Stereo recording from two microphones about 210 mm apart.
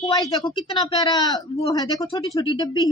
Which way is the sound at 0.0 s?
20° left (ahead or behind).